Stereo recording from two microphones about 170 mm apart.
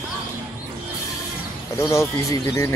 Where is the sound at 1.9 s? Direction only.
20° left (ahead or behind).